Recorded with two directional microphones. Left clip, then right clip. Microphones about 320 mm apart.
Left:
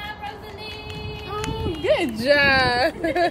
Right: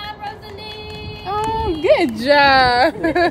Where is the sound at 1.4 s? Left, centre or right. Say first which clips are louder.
Right 8 dB; centre.